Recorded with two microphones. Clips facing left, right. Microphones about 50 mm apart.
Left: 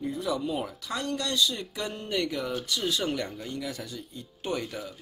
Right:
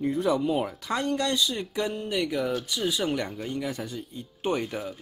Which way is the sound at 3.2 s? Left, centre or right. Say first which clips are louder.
Right 3 dB; right.